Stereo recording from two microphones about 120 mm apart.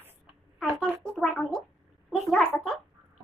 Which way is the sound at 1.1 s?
5° left (ahead or behind).